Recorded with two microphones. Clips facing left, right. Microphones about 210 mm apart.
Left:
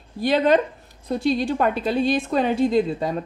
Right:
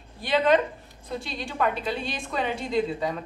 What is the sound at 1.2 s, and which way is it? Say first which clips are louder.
A woman's voice: left 8 dB; 40° left (ahead or behind).